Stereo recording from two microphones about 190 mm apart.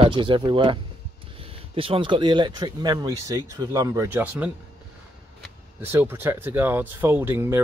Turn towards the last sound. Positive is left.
turn(degrees=-10)  # may be behind; listen again after turning